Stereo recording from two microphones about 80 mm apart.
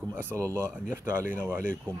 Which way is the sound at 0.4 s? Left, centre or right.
Right.